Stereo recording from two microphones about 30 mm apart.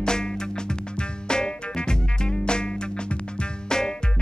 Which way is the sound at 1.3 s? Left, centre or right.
Left.